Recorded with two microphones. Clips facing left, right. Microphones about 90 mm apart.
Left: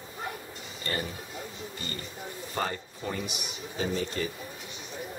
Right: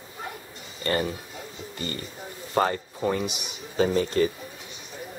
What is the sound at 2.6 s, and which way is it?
Speech, 60° right (ahead or behind).